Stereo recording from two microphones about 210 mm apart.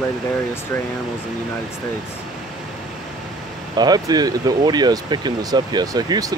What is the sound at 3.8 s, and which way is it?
Speech, 20° right (ahead or behind).